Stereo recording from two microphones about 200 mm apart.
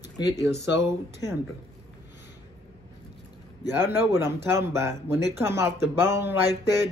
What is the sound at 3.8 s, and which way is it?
Speech, 10° right (ahead or behind).